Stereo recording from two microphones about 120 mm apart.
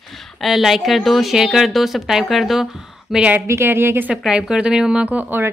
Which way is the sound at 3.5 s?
20° right (ahead or behind).